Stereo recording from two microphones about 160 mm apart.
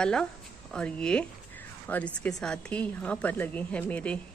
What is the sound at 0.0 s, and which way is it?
A woman's voice, 5° left (ahead or behind).